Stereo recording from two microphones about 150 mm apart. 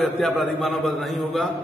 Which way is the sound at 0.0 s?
Centre (ahead or behind).